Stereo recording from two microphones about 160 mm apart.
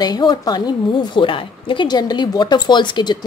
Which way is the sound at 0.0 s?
25° left (ahead or behind).